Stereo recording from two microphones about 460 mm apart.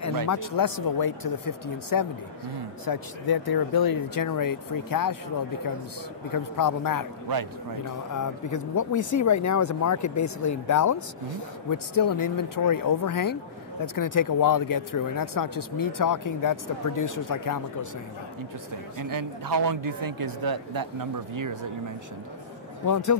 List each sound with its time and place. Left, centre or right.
0.5 s speech: left
6.3 s speech: left
8.1 s speech: left
18.9 s speech: right
22.8 s speech: left